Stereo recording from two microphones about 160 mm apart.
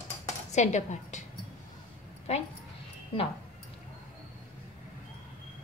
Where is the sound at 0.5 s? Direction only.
45° left (ahead or behind).